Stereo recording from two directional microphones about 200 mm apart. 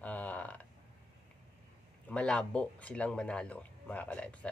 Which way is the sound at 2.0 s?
5° left (ahead or behind).